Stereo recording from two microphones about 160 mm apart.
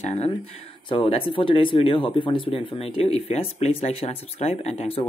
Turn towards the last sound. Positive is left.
turn(degrees=40)  # may be behind; listen again after turning